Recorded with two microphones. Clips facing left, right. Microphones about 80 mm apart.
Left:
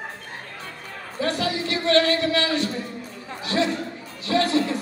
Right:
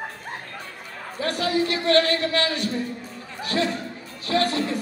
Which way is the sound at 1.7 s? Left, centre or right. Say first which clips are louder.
Left 3 dB; left.